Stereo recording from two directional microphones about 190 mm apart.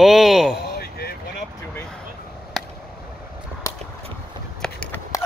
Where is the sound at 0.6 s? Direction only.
55° left (ahead or behind).